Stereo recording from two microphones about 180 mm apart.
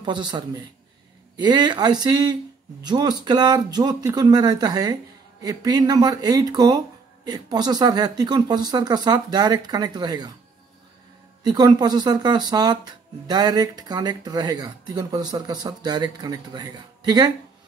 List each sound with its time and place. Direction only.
0.0 s speech: 25° right (ahead or behind)
11.4 s speech: 20° right (ahead or behind)